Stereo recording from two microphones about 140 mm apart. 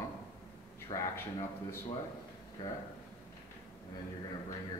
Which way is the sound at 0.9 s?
35° left (ahead or behind).